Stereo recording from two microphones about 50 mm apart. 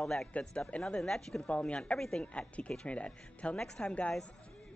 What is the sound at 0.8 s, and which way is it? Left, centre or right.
Speech, centre.